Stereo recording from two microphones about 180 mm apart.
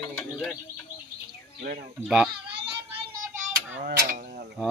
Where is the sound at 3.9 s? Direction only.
50° right (ahead or behind).